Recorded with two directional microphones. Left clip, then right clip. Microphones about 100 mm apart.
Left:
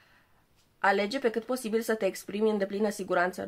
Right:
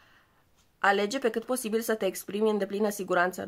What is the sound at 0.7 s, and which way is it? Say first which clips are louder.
Speech: right 1 dB; 30° right (ahead or behind).